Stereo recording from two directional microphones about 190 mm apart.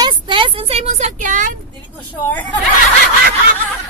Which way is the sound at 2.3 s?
10° left (ahead or behind).